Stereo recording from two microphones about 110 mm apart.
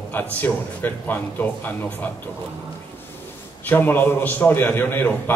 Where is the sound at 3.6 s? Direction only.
20° left (ahead or behind).